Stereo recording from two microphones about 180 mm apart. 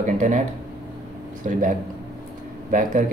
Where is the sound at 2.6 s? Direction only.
45° right (ahead or behind).